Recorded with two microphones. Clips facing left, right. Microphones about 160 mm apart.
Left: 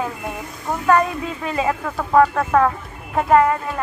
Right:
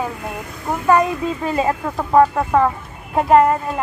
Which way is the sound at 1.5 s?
35° right (ahead or behind).